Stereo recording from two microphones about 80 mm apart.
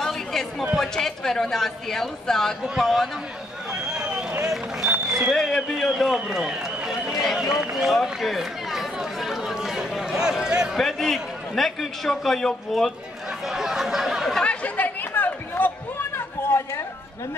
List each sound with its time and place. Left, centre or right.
0.0 s a sound: centre
0.7 s a man's voice: centre
3.8 s run: centre
5.3 s a man's voice: centre
6.3 s run: centre
7.7 s speech: centre
10.8 s a man's voice: centre
14.4 s chatter: centre
16.4 s a sound: left